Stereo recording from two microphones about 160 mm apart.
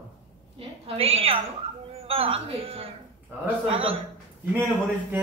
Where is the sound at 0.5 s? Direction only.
35° right (ahead or behind).